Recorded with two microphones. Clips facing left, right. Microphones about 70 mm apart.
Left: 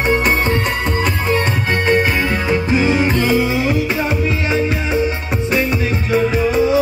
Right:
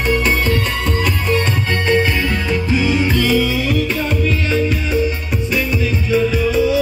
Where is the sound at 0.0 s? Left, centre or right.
Left.